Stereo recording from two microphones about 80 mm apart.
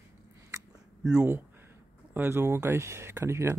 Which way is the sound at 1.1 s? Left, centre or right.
Right.